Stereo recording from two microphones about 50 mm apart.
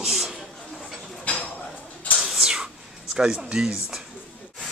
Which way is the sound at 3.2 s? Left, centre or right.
Centre.